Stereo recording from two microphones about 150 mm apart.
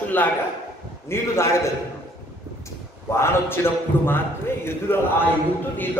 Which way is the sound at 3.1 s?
15° left (ahead or behind).